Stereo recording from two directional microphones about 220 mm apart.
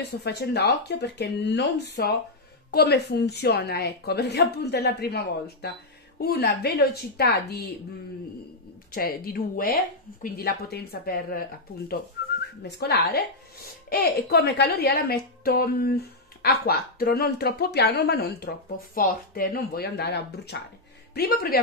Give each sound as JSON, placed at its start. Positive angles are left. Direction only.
{"t": 0.0, "sound": "a woman's voice", "side_deg": 50}
{"t": 8.9, "sound": "a woman's voice", "side_deg": 40}
{"t": 12.6, "sound": "a woman's voice", "side_deg": 50}